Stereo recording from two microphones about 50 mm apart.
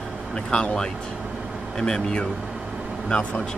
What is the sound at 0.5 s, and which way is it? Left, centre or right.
Speech, left.